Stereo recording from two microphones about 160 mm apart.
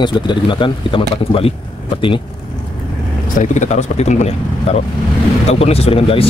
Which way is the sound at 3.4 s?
45° left (ahead or behind).